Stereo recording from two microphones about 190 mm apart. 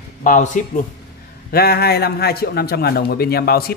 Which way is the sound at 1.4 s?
55° left (ahead or behind).